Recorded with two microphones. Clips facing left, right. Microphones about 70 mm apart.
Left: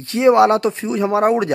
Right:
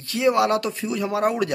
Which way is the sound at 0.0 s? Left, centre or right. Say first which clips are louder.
Left 7 dB; left.